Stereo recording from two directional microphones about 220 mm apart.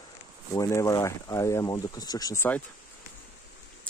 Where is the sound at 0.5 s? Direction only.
15° left (ahead or behind).